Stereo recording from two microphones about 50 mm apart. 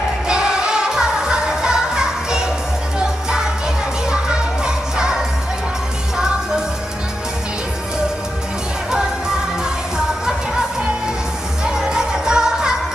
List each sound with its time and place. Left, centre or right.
0.3 s music: centre
9.6 s music of asia: centre
11.6 s music: centre